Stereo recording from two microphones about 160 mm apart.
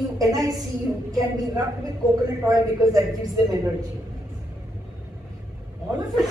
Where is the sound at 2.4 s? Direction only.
20° right (ahead or behind).